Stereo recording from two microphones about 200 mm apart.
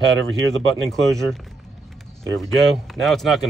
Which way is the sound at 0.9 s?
Centre (ahead or behind).